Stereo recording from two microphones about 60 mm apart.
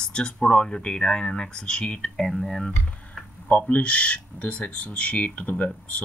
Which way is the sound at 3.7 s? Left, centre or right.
Left.